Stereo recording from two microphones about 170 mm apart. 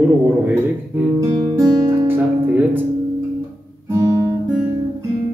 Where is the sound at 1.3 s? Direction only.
20° right (ahead or behind).